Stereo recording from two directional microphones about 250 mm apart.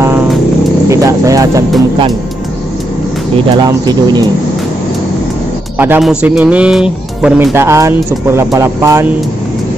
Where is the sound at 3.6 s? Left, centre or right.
Centre.